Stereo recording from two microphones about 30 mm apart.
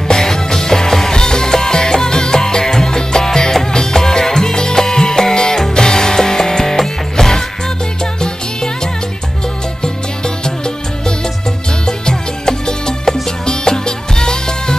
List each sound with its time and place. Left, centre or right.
0.1 s music: centre
10.2 s music: left